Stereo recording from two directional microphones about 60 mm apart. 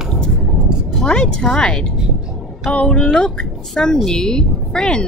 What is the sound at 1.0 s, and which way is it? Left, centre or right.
A woman's voice, centre.